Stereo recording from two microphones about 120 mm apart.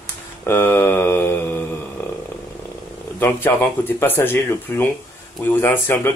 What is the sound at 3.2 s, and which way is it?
Speech, 15° left (ahead or behind).